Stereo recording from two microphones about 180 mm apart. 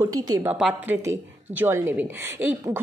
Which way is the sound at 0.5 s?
5° right (ahead or behind).